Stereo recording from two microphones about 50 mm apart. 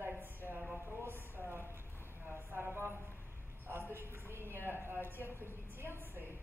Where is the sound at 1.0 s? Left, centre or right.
Right.